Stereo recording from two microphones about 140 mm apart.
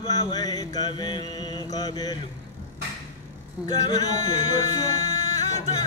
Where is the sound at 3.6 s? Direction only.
25° left (ahead or behind).